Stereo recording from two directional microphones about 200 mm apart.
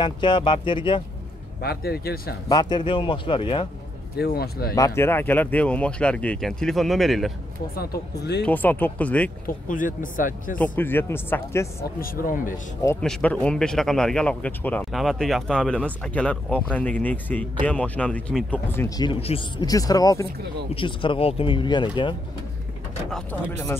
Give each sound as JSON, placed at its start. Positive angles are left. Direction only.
{"t": 0.0, "sound": "speech", "side_deg": 25}
{"t": 1.6, "sound": "speech", "side_deg": 50}
{"t": 2.5, "sound": "speech", "side_deg": 20}
{"t": 4.2, "sound": "speech", "side_deg": 50}
{"t": 4.7, "sound": "speech", "side_deg": 15}
{"t": 7.8, "sound": "speech", "side_deg": 50}
{"t": 8.5, "sound": "speech", "side_deg": 10}
{"t": 9.5, "sound": "speech", "side_deg": 40}
{"t": 10.6, "sound": "speech", "side_deg": 10}
{"t": 12.0, "sound": "speech", "side_deg": 45}
{"t": 13.0, "sound": "speech", "side_deg": 5}
{"t": 18.9, "sound": "speech", "side_deg": 20}
{"t": 23.1, "sound": "speech", "side_deg": 10}